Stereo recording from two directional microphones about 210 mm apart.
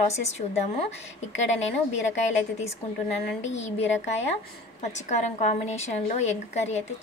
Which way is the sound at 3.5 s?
30° left (ahead or behind).